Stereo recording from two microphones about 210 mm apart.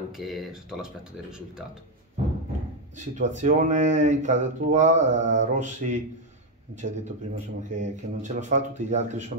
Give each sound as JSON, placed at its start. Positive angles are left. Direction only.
{"t": 0.1, "sound": "speech", "side_deg": 0}
{"t": 3.2, "sound": "speech", "side_deg": -35}